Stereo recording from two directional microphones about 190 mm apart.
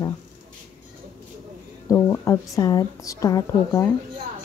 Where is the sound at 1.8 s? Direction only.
15° left (ahead or behind).